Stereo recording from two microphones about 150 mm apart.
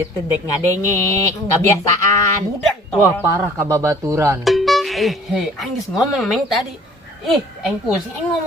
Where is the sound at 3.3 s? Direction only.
20° right (ahead or behind).